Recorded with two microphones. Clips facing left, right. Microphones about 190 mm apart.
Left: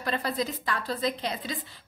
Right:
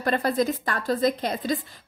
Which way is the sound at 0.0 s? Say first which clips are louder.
Right 6 dB; 50° right (ahead or behind).